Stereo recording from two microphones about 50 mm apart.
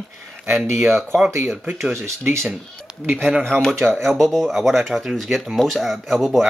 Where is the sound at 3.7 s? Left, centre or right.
Right.